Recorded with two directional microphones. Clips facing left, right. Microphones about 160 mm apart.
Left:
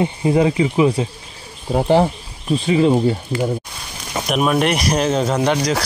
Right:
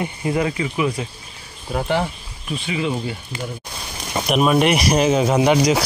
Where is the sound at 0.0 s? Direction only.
25° left (ahead or behind); by 3.2 s 40° left (ahead or behind).